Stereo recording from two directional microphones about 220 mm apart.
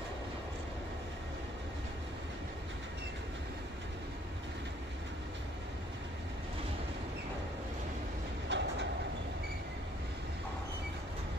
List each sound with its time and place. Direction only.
8.5 s train: 55° right (ahead or behind)